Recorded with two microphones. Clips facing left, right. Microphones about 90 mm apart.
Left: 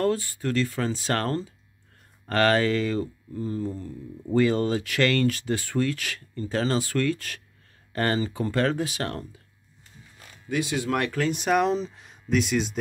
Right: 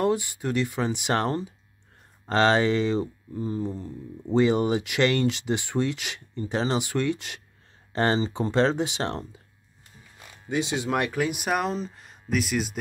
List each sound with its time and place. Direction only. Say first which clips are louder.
0.0 s speech: even; 20° right (ahead or behind)
10.5 s speech: even; 25° right (ahead or behind); by 12.7 s 5° right (ahead or behind)